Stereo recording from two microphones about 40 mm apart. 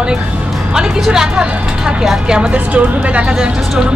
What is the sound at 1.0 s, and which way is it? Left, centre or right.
Speech, centre.